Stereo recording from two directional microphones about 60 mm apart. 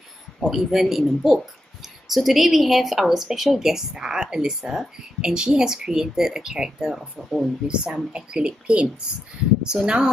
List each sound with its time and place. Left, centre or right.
0.4 s speech: centre
7.6 s speech: centre